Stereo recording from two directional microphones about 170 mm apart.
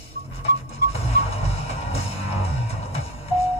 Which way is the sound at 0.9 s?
35° left (ahead or behind).